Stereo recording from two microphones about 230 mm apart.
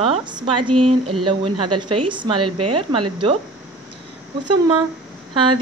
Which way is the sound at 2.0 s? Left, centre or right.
Right.